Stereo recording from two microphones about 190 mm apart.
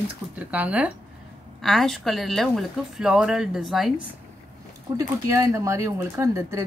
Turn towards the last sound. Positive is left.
turn(degrees=-15)  # may be behind; listen again after turning